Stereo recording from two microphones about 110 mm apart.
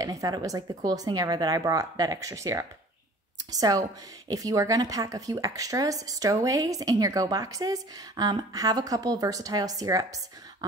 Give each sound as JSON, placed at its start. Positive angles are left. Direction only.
{"t": 0.0, "sound": "speech", "side_deg": -35}